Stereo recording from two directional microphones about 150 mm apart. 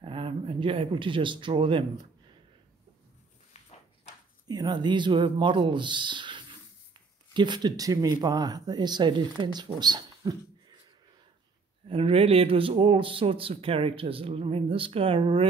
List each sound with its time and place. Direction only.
0.0 s speech: 35° right (ahead or behind)
4.5 s speech: 25° right (ahead or behind)
11.9 s speech: 40° right (ahead or behind)